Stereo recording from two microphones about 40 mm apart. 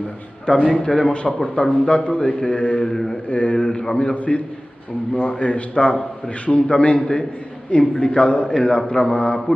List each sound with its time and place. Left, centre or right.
0.7 s a man's voice: centre
1.1 s a man's voice: left
2.8 s a man's voice: centre
3.3 s a man's voice: left
3.8 s a man's voice: centre
4.1 s a man's voice: left
8.5 s a man's voice: centre